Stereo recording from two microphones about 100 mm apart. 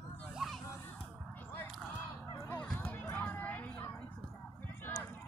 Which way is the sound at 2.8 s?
20° left (ahead or behind).